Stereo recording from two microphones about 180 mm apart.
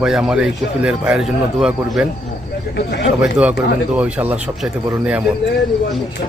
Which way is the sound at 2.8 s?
70° left (ahead or behind).